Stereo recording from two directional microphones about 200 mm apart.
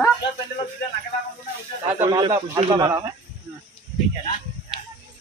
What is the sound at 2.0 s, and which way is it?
Speech, 15° right (ahead or behind).